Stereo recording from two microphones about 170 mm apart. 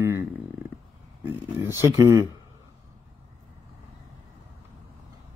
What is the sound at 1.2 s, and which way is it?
Speech, 15° right (ahead or behind).